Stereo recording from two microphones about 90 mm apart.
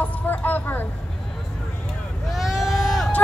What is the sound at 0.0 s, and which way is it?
Vehicle, 20° left (ahead or behind).